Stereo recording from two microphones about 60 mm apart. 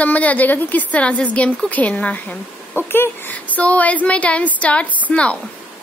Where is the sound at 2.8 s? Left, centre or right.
Left.